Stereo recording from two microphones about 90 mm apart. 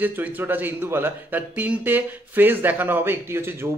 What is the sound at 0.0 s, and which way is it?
A man's voice, 20° right (ahead or behind).